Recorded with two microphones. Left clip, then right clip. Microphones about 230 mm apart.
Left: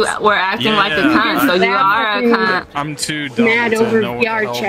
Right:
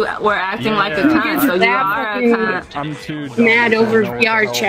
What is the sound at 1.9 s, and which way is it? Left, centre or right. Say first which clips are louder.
Speech: left 3 dB; left.